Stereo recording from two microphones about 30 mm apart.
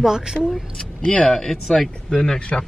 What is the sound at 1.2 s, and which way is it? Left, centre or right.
Speech, centre.